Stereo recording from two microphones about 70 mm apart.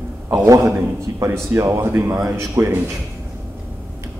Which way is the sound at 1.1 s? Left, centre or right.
Right.